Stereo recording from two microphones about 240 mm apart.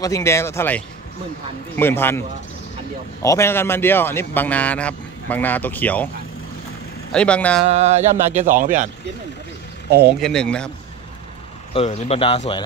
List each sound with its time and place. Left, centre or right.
0.0 s a man's voice: centre
7.1 s speech: centre
7.6 s speech: right
10.0 s speech: centre
11.7 s speech: left